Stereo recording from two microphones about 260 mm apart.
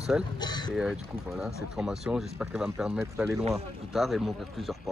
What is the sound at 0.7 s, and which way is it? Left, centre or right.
Speech, centre.